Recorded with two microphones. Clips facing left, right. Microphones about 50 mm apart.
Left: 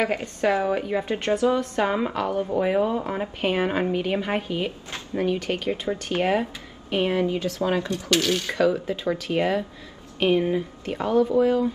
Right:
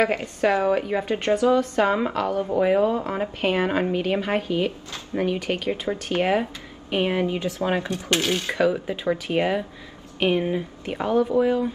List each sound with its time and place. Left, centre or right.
0.0 s a woman's voice: centre
5.1 s a woman's voice: centre; by 8.5 s right
8.5 s speech: centre